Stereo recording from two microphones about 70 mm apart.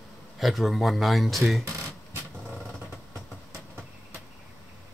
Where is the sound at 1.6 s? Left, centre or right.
Right.